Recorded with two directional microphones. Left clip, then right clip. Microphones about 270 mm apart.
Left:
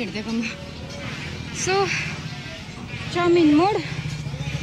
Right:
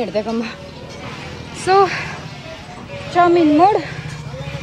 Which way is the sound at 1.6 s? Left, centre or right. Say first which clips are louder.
Right 8 dB; centre.